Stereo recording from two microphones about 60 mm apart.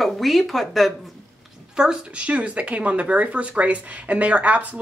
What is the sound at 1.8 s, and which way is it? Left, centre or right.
Speech, centre.